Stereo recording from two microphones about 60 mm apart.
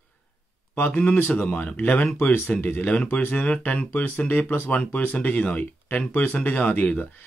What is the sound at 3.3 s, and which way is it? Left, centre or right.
Speech, left.